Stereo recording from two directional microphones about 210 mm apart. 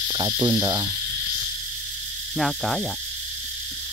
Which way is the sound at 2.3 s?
Centre (ahead or behind).